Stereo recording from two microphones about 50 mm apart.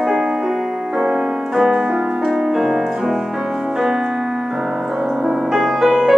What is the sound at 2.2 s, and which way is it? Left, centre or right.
Music, centre.